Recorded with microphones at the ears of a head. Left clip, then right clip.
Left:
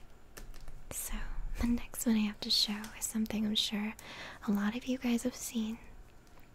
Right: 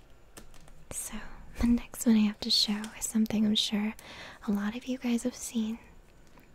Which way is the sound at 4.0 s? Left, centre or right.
Centre.